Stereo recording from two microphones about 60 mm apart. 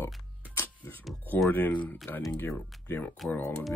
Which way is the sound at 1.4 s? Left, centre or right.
Left.